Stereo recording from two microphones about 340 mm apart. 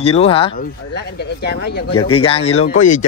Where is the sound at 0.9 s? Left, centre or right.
Left.